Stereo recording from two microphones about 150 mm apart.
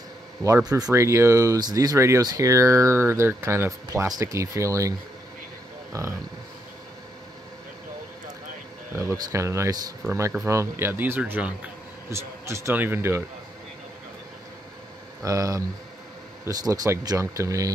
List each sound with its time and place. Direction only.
0.7 s speech: 25° right (ahead or behind)
8.9 s speech: 20° right (ahead or behind)
15.2 s speech: 25° right (ahead or behind)